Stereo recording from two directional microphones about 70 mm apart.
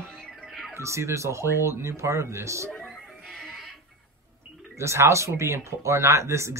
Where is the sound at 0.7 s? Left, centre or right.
Right.